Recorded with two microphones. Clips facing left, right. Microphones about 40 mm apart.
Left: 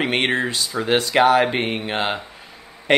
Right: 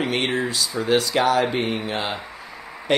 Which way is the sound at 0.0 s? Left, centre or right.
Left.